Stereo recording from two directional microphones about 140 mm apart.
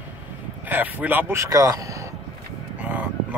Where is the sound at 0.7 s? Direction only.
10° right (ahead or behind).